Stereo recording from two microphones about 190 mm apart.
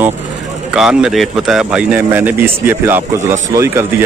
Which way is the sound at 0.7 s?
5° right (ahead or behind).